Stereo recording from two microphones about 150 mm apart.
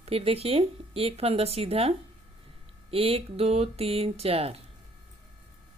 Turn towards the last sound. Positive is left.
turn(degrees=-40)  # may be behind; listen again after turning